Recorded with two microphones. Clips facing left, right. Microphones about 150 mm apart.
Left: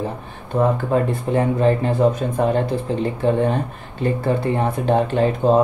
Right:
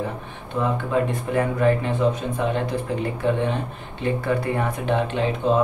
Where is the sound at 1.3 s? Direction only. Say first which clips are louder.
Left 3 dB; 25° left (ahead or behind); by 2.6 s 45° left (ahead or behind).